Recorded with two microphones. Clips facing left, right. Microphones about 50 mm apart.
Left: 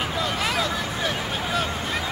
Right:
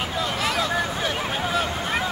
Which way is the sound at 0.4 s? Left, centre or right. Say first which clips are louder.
Right 1 dB; centre.